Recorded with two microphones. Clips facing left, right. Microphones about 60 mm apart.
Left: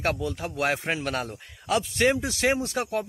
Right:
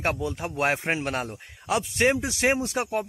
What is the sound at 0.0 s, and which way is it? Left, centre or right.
Speech, right.